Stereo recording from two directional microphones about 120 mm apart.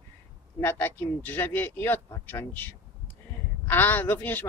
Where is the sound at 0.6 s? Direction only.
15° left (ahead or behind).